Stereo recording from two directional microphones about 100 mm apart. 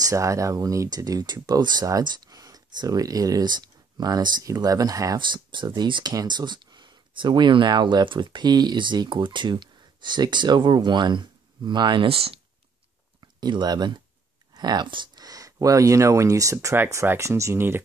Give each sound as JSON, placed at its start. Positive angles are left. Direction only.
{"t": 0.0, "sound": "speech", "side_deg": -30}
{"t": 5.3, "sound": "speech", "side_deg": -50}
{"t": 12.1, "sound": "speech", "side_deg": -75}
{"t": 13.2, "sound": "speech", "side_deg": -45}
{"t": 14.5, "sound": "a sound", "side_deg": -45}
{"t": 15.2, "sound": "speech", "side_deg": -35}